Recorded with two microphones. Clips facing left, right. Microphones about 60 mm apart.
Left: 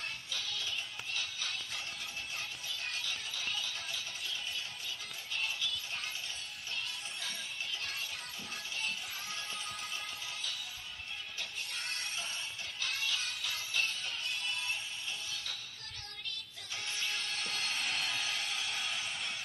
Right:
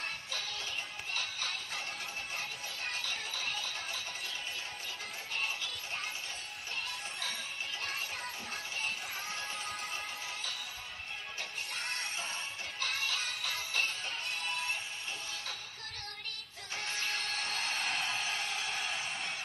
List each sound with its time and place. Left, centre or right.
0.3 s music: right
11.3 s music: right
16.7 s music: right